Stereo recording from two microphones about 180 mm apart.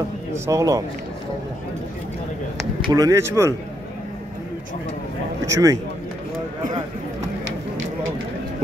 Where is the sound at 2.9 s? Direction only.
20° right (ahead or behind).